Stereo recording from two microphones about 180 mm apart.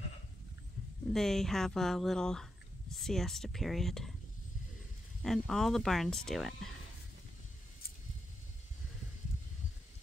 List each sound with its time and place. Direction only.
1.1 s speech: centre (ahead or behind)
5.2 s speech: centre (ahead or behind)